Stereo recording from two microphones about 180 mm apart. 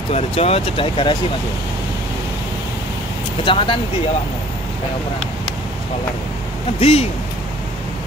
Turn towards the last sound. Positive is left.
turn(degrees=35)  # may be behind; listen again after turning